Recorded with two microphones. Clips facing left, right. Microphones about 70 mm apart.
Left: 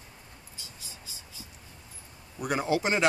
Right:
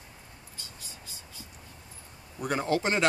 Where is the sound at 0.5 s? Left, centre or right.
Right.